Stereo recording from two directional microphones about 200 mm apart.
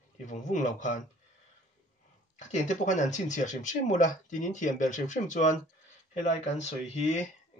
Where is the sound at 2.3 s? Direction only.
35° left (ahead or behind).